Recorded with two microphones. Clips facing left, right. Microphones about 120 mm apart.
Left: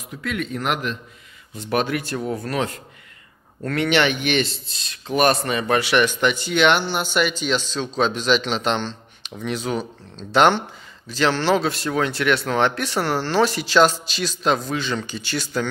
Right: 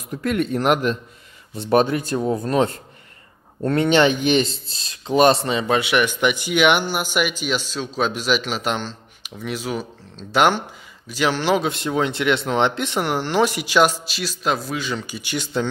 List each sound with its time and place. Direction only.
0.1 s speech: 45° right (ahead or behind); by 15.6 s 20° right (ahead or behind)